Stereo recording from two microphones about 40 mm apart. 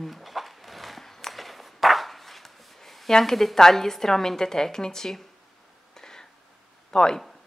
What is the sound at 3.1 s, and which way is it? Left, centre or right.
Speech, centre.